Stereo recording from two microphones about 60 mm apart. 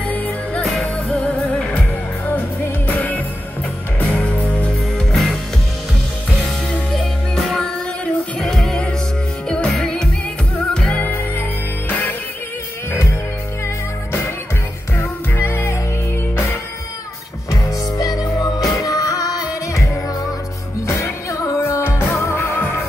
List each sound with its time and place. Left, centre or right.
1.0 s music: centre
2.9 s music: left
4.9 s music: centre
6.7 s music: centre
11.0 s music: left
15.3 s music: left
17.5 s music: left
21.8 s music: left